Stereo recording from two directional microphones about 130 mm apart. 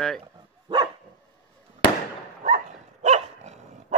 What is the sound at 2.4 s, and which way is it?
Dog, 65° right (ahead or behind).